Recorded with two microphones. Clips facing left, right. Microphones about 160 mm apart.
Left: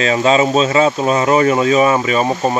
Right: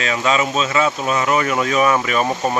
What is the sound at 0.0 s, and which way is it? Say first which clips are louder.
Speech: left 6 dB; 30° left (ahead or behind).